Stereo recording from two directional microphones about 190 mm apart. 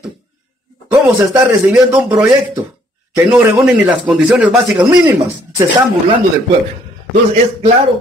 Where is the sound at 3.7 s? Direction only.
5° right (ahead or behind).